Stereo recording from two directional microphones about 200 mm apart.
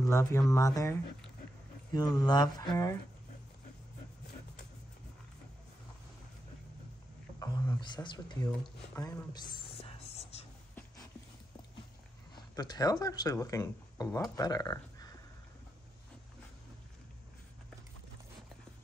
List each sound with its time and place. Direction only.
0.0 s speech: 15° left (ahead or behind)
7.3 s speech: 20° left (ahead or behind)
8.9 s whispering: 20° left (ahead or behind)
12.5 s speech: 20° left (ahead or behind)